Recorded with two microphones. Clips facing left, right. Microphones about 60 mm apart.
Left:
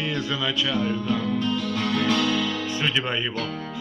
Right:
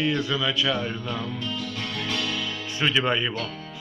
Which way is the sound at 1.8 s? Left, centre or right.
Left.